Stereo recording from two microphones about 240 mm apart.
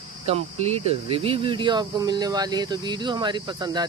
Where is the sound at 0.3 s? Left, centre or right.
Right.